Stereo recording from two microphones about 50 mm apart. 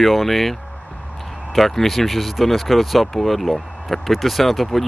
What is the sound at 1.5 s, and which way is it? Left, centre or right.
Speech, centre.